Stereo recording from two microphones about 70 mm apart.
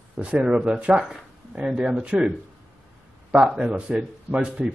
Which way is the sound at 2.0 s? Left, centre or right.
Centre.